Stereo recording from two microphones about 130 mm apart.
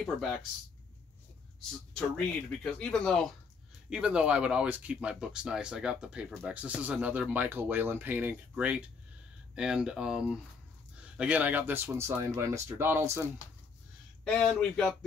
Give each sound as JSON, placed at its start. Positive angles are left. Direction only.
{"t": 2.0, "sound": "speech", "side_deg": 5}
{"t": 3.9, "sound": "speech", "side_deg": -5}
{"t": 14.2, "sound": "speech", "side_deg": 10}